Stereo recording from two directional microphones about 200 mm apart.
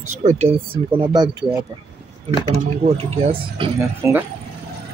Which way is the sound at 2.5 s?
30° right (ahead or behind).